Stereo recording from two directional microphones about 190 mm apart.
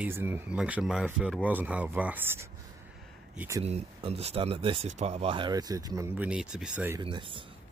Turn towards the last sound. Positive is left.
turn(degrees=-25)  # may be behind; listen again after turning